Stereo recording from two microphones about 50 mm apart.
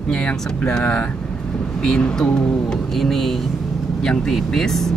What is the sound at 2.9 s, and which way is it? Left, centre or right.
Speech, centre.